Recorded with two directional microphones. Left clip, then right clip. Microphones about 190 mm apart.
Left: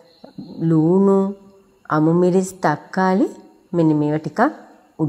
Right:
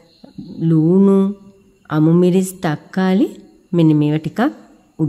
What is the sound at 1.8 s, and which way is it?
A woman's voice, 25° right (ahead or behind).